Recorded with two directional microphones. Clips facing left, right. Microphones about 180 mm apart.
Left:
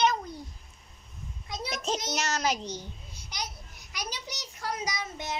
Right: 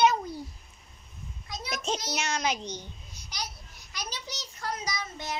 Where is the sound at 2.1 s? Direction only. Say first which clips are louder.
Left 2 dB; centre (ahead or behind).